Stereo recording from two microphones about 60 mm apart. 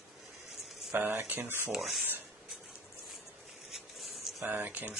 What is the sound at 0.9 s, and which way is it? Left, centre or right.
Speech, right.